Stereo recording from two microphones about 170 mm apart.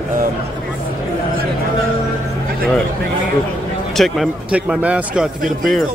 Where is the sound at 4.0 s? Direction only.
Centre (ahead or behind).